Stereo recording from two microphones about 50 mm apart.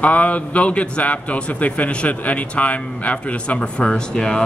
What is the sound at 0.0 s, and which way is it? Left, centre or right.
A man's voice, left.